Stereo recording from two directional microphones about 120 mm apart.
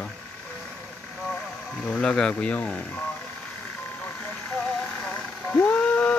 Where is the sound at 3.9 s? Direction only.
10° left (ahead or behind).